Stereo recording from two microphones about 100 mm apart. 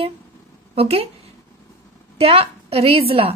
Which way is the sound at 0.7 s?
75° right (ahead or behind).